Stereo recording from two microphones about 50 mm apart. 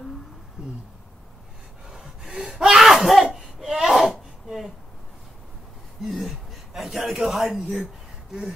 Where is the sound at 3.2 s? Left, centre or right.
Centre.